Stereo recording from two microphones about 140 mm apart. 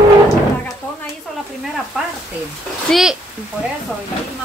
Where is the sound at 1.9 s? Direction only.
10° right (ahead or behind).